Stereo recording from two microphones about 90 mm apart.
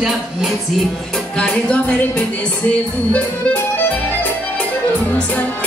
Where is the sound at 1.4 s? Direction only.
10° left (ahead or behind).